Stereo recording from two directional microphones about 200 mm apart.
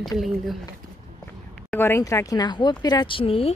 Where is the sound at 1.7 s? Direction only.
10° left (ahead or behind); by 3.5 s 30° left (ahead or behind).